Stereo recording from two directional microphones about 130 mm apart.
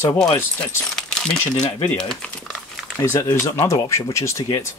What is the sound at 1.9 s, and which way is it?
Speech, 5° left (ahead or behind).